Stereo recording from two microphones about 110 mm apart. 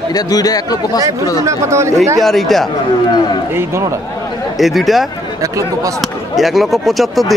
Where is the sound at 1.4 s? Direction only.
25° right (ahead or behind).